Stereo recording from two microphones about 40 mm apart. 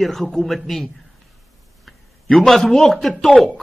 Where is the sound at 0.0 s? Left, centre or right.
Centre.